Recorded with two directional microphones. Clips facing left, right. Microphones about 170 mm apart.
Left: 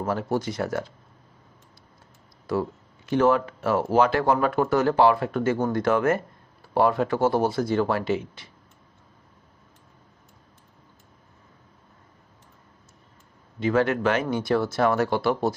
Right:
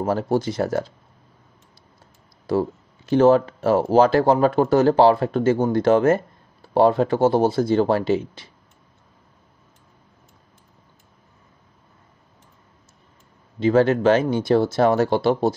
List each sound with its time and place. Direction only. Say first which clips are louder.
0.0 s speech: right 5 dB; 35° right (ahead or behind)
2.4 s speech: right 5 dB; 30° right (ahead or behind)
13.6 s speech: right 5 dB; 30° right (ahead or behind)